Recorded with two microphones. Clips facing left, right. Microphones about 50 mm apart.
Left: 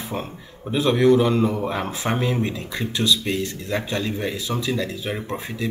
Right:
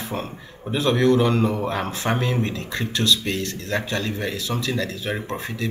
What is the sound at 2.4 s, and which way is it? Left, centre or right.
Speech, centre.